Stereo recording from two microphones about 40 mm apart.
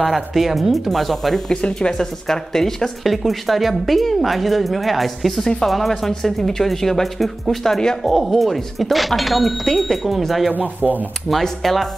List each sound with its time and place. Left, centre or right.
0.0 s a woman's voice: centre
1.5 s speech: left
3.0 s a woman's voice: centre
10.5 s speech: right
11.2 s a woman's voice: centre